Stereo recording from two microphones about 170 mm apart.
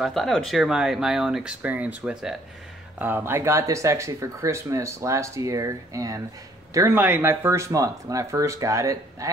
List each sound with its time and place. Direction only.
0.0 s speech: centre (ahead or behind); by 9.3 s 20° right (ahead or behind)